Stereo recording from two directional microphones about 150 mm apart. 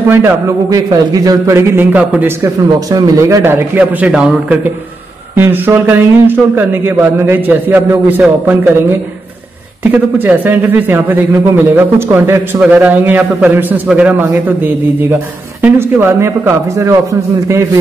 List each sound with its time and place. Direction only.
0.1 s a man's voice: 20° right (ahead or behind)
9.8 s a man's voice: 10° right (ahead or behind)